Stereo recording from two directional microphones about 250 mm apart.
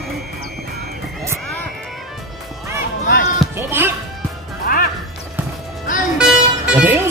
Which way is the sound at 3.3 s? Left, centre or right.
Centre.